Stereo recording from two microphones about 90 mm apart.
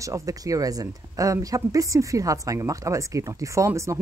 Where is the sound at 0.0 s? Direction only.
35° right (ahead or behind).